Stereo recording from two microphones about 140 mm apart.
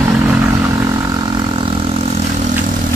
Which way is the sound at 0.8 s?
25° right (ahead or behind).